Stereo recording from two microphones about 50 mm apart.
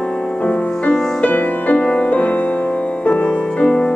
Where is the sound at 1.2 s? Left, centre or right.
Left.